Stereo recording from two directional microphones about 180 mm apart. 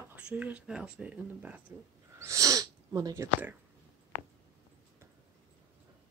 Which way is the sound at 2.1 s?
15° right (ahead or behind).